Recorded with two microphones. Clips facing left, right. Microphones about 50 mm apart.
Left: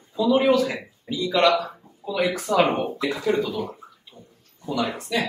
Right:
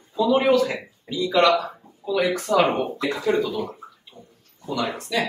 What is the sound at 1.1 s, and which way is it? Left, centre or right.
Speech, centre.